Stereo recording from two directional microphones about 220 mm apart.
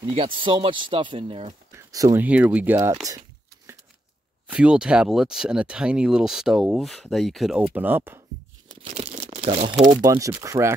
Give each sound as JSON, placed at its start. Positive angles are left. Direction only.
{"t": 0.0, "sound": "speech", "side_deg": -25}
{"t": 4.5, "sound": "speech", "side_deg": -5}
{"t": 8.8, "sound": "crumpling", "side_deg": -30}
{"t": 9.8, "sound": "speech", "side_deg": -15}